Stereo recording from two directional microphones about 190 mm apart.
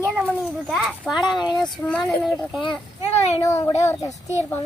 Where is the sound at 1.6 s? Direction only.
Centre (ahead or behind).